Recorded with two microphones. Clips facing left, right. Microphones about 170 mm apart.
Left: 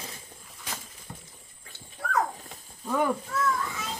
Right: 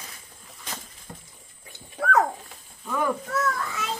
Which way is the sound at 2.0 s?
90° right.